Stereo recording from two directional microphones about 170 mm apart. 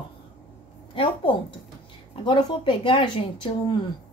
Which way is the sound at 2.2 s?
30° left (ahead or behind).